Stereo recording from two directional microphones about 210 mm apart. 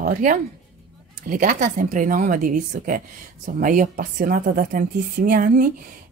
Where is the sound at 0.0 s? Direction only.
40° right (ahead or behind).